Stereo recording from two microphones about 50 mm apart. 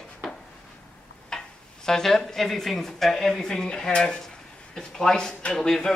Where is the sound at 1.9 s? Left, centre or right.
Centre.